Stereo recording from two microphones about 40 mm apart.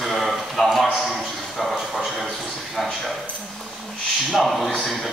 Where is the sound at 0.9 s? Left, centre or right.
Centre.